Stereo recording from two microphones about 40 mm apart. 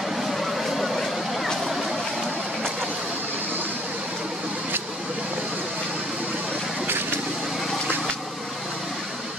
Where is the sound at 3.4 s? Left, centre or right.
Right.